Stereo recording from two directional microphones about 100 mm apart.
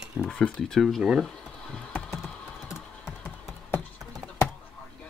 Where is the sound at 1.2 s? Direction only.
10° left (ahead or behind).